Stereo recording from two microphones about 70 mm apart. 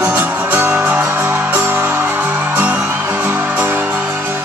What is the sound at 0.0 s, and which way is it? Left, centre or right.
Music, right.